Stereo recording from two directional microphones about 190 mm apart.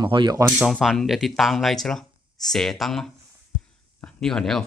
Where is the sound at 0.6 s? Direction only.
Centre (ahead or behind).